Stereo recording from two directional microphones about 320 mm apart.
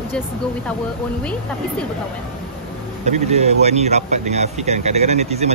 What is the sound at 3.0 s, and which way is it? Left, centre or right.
Speech, right.